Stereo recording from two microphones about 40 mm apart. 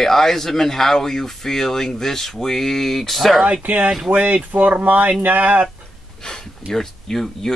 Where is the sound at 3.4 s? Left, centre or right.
Right.